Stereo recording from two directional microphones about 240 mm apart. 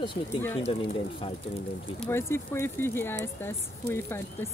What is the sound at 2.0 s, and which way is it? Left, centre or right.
Speech, centre.